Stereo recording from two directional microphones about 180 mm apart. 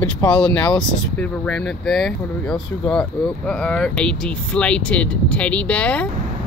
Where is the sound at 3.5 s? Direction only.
5° left (ahead or behind).